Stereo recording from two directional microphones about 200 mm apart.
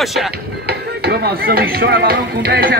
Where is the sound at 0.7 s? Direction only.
55° right (ahead or behind).